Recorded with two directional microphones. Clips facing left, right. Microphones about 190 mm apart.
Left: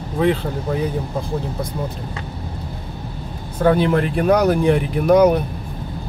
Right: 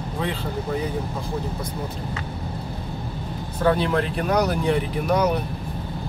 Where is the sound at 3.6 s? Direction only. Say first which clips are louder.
Left 5 dB; 45° left (ahead or behind).